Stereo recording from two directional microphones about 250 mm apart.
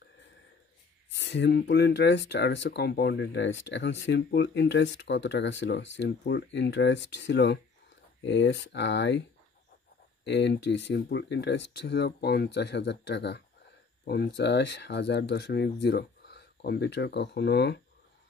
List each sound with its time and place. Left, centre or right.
1.2 s speech: left
10.2 s speech: left